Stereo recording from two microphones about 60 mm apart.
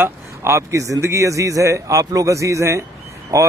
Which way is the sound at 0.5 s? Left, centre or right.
Right.